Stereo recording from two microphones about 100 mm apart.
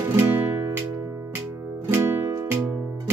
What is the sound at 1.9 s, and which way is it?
Music, 25° right (ahead or behind).